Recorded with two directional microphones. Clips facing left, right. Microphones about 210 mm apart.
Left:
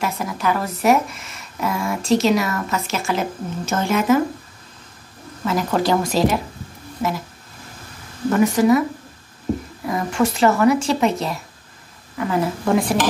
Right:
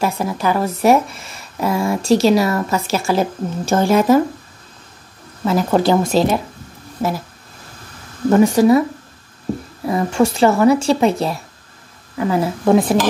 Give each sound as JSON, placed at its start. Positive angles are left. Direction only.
{"t": 0.0, "sound": "speech", "side_deg": -30}
{"t": 5.4, "sound": "speech", "side_deg": -30}
{"t": 7.0, "sound": "speech", "side_deg": -40}
{"t": 8.3, "sound": "speech", "side_deg": -30}
{"t": 9.8, "sound": "speech", "side_deg": -30}